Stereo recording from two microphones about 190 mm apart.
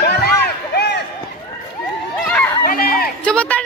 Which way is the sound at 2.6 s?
50° left (ahead or behind).